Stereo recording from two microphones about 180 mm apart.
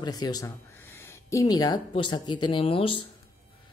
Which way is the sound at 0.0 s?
20° left (ahead or behind).